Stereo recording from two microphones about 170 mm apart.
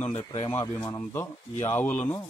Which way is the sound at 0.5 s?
15° left (ahead or behind).